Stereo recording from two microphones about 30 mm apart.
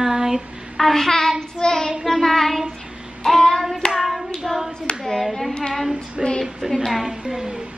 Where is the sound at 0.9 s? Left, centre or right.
Centre.